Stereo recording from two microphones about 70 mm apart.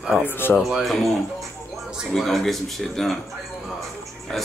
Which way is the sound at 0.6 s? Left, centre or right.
Centre.